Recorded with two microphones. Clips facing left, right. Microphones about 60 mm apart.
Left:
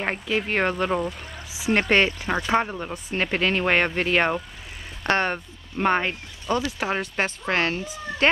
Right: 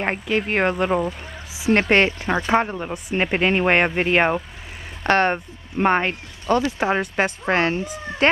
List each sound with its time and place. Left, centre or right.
0.0 s speech: centre
5.0 s speech: right
5.8 s speech: centre